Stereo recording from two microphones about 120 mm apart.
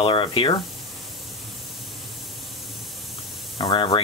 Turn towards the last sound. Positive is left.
turn(degrees=40)  # may be behind; listen again after turning